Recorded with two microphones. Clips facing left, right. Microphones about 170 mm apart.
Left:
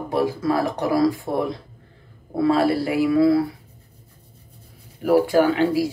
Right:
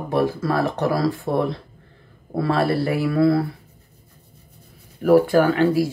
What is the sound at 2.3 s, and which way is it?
Speech, 15° left (ahead or behind).